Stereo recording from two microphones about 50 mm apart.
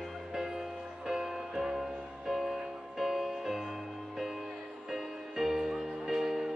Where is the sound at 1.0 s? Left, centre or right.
Centre.